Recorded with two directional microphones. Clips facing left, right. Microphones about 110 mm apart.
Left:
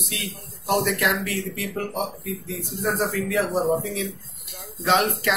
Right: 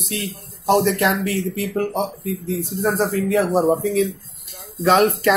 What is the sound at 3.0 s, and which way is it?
Speech, 30° right (ahead or behind).